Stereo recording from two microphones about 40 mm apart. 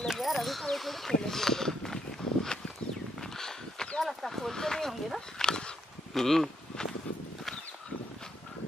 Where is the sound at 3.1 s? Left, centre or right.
Centre.